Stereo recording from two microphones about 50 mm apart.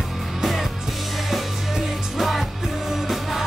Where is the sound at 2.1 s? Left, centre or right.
Centre.